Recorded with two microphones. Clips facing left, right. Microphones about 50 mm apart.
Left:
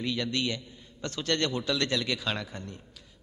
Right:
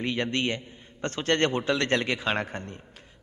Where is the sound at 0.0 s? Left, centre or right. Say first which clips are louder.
Right 3 dB; right.